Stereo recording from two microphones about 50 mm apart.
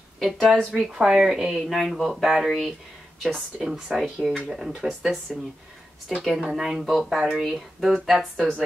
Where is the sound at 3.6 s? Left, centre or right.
Centre.